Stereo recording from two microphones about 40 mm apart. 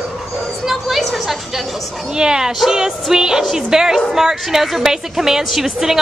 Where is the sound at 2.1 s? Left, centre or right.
Centre.